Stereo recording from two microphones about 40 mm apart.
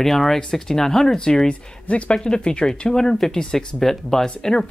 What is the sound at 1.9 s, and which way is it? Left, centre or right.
Speech, left.